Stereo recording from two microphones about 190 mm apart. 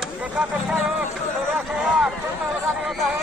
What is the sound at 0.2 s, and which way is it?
Speech, 5° right (ahead or behind).